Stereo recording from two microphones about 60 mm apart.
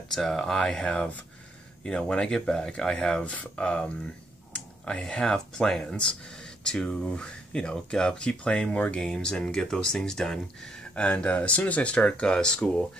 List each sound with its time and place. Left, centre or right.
0.1 s speech: centre
4.5 s a sound: left
4.9 s speech: centre